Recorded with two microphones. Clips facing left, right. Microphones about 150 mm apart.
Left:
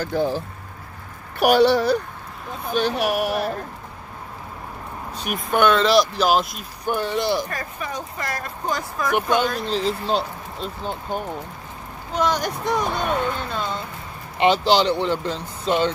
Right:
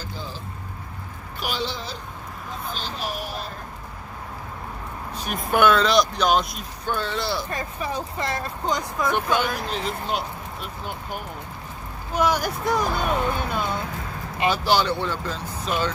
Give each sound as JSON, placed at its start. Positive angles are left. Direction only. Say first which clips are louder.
{"t": 0.0, "sound": "speech", "louder": "left 13 dB", "side_deg": 60}
{"t": 1.4, "sound": "speech", "louder": "left 14 dB", "side_deg": 65}
{"t": 5.4, "sound": "speech", "louder": "left 1 dB", "side_deg": -5}
{"t": 6.9, "sound": "speech", "louder": "left 5 dB", "side_deg": 15}
{"t": 7.4, "sound": "speech", "louder": "right 1 dB", "side_deg": -25}
{"t": 9.1, "sound": "speech", "louder": "left 4 dB", "side_deg": 20}
{"t": 9.7, "sound": "speech", "louder": "left 5 dB", "side_deg": 30}
{"t": 12.1, "sound": "speech", "louder": "even", "side_deg": -10}
{"t": 14.4, "sound": "speech", "louder": "left 4 dB", "side_deg": 20}